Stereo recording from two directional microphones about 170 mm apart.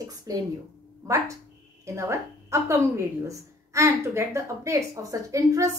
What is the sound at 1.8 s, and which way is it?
A woman's voice, 15° right (ahead or behind).